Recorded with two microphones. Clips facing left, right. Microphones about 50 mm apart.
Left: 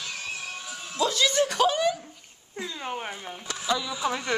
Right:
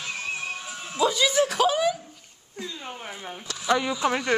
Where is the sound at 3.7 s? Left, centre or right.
Right.